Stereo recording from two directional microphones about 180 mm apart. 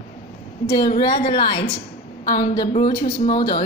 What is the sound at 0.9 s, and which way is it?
Speech, 30° left (ahead or behind).